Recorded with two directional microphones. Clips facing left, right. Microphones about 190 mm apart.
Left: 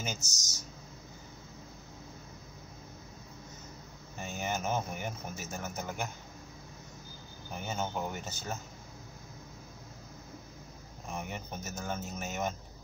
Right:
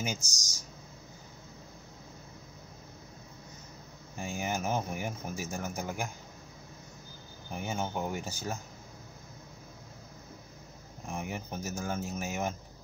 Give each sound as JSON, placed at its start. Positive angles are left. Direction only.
{"t": 0.0, "sound": "speech", "side_deg": -15}
{"t": 4.2, "sound": "speech", "side_deg": -10}
{"t": 7.5, "sound": "speech", "side_deg": -10}
{"t": 11.1, "sound": "speech", "side_deg": -10}